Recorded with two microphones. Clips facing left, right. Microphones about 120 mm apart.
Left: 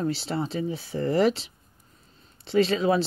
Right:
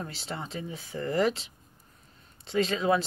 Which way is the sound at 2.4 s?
35° left (ahead or behind).